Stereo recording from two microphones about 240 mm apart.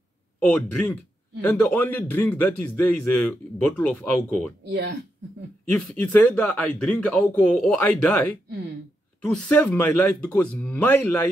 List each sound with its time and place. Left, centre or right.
0.4 s a man's voice: centre
4.6 s speech: right
5.7 s a man's voice: centre